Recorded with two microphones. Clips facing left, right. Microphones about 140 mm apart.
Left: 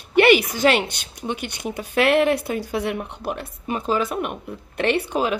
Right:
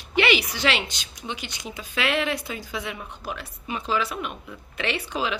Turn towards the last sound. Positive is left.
turn(degrees=50)  # may be behind; listen again after turning